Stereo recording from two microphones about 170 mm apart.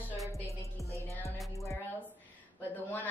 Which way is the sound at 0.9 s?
15° left (ahead or behind).